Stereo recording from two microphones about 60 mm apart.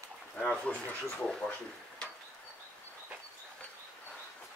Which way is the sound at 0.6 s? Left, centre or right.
Left.